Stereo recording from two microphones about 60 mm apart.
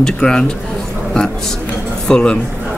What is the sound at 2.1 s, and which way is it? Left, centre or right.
Speech, centre.